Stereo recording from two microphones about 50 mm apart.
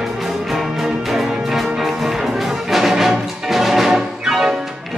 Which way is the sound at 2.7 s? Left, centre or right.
Centre.